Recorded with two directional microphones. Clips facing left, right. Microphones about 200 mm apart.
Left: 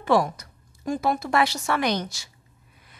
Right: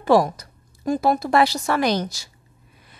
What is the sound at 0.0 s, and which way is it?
A woman's voice, 35° right (ahead or behind).